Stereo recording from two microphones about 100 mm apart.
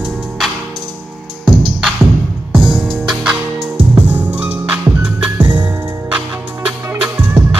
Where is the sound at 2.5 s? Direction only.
Centre (ahead or behind).